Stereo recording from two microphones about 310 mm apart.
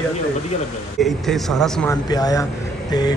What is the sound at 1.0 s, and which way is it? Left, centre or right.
Speech, centre.